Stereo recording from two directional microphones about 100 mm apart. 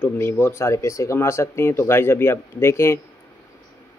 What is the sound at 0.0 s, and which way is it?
Speech, 20° left (ahead or behind).